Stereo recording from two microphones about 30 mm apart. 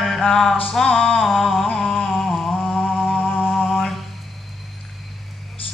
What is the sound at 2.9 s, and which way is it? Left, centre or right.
Music, right.